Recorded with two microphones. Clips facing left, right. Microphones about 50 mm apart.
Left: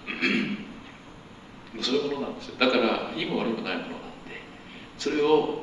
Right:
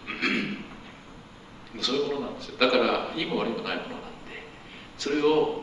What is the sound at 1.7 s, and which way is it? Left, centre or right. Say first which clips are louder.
Speech: even; centre.